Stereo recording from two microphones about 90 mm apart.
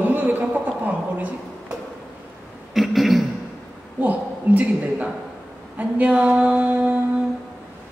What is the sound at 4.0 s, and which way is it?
A woman's voice, 20° right (ahead or behind).